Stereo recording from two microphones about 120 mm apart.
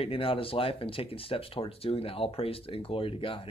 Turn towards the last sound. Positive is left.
turn(degrees=50)  # may be behind; listen again after turning